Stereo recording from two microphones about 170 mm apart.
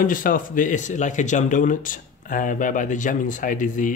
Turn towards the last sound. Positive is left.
turn(degrees=50)  # may be behind; listen again after turning